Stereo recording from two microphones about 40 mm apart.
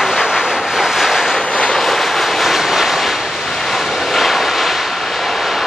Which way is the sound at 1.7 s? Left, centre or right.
Centre.